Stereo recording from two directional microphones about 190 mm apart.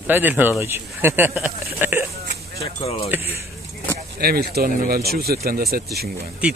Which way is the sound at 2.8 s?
35° left (ahead or behind).